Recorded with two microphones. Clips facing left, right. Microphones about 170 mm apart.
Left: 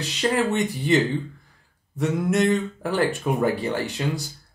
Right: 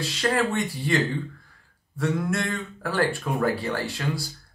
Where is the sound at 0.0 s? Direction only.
20° left (ahead or behind).